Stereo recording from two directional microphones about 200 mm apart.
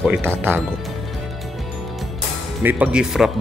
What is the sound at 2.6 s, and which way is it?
Speech, 10° right (ahead or behind).